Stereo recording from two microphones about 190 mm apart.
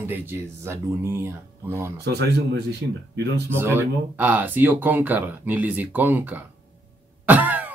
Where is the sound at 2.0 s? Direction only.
60° right (ahead or behind).